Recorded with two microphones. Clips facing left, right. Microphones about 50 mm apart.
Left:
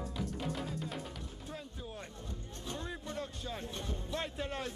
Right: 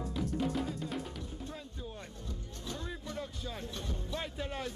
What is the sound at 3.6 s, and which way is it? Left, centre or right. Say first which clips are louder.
Music: even; left.